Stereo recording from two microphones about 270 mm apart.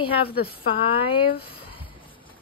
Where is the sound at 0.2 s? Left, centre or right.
Left.